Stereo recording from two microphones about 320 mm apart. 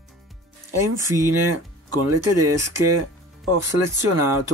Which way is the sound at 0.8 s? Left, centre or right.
Right.